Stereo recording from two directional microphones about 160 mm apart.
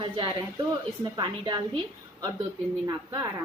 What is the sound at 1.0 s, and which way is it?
Child singing, 30° right (ahead or behind).